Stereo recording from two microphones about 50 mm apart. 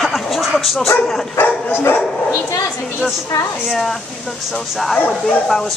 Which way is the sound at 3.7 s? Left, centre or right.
Centre.